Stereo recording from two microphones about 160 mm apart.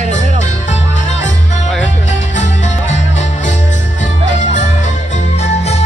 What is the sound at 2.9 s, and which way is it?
Music, 45° left (ahead or behind).